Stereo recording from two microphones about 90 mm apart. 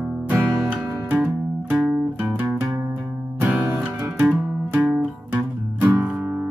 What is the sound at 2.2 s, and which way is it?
Music, 25° right (ahead or behind).